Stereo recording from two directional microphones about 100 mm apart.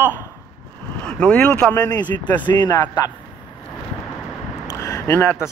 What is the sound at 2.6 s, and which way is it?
Speech, 45° left (ahead or behind).